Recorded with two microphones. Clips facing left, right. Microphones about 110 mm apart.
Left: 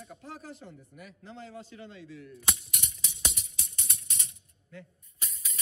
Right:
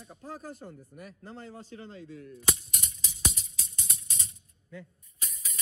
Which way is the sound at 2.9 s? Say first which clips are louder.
Right 4 dB; 25° right (ahead or behind).